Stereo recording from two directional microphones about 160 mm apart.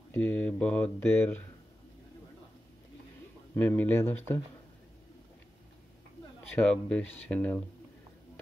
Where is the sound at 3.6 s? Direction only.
10° left (ahead or behind).